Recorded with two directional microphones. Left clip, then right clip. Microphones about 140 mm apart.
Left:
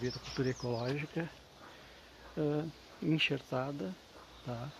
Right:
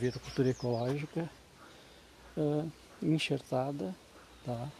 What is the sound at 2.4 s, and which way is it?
Speech, 30° right (ahead or behind).